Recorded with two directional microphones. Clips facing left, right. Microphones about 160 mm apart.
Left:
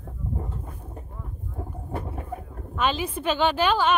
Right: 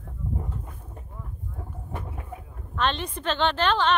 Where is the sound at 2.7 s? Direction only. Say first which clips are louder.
Left 2 dB; 5° left (ahead or behind).